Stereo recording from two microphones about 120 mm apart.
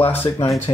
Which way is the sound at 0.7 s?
45° left (ahead or behind).